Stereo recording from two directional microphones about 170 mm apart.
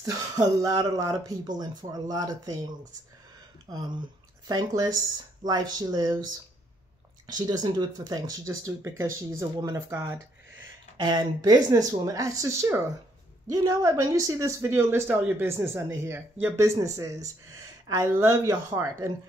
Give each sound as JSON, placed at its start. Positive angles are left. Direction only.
{"t": 0.0, "sound": "speech", "side_deg": -20}
{"t": 4.5, "sound": "speech", "side_deg": -20}
{"t": 7.3, "sound": "speech", "side_deg": -25}